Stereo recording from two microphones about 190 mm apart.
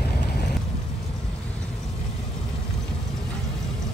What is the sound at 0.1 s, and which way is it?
Vehicle, 60° left (ahead or behind).